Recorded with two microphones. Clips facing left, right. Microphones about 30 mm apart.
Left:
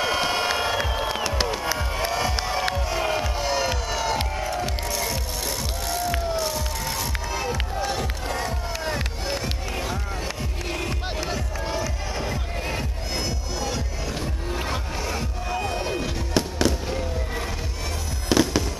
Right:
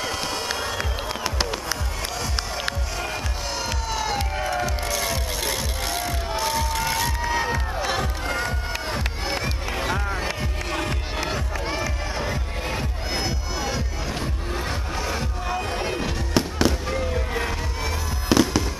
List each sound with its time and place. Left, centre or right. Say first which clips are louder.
0.0 s music: left 4 dB; centre
0.6 s crowd: left 3 dB; centre
0.9 s music: left 2 dB; centre
2.0 s music: left 4 dB; centre
4.4 s music: right 2 dB; right
4.8 s music: right 2 dB; right
7.8 s music: right 2 dB; centre
12.6 s music: right 1 dB; centre
15.7 s fireworks: right 1 dB; centre